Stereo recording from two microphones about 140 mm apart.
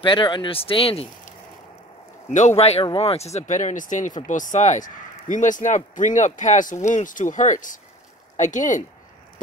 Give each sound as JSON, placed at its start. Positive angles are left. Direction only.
{"t": 0.0, "sound": "speech", "side_deg": 35}
{"t": 2.3, "sound": "speech", "side_deg": 55}